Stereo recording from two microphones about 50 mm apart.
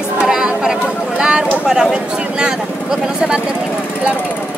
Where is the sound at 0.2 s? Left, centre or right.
Centre.